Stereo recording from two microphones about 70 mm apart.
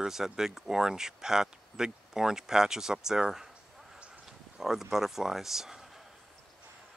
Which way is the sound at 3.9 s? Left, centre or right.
Centre.